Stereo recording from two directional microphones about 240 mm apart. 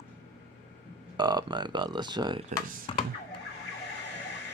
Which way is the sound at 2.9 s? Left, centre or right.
Left.